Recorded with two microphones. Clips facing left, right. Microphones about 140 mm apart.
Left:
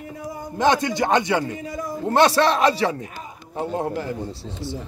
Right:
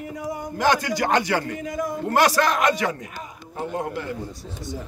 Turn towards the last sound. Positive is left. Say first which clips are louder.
# left 3 dB
turn(degrees=35)  # may be behind; listen again after turning